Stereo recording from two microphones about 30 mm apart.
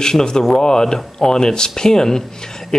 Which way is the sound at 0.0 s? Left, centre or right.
Left.